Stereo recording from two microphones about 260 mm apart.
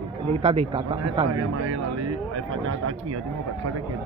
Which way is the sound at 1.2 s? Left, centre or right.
Right.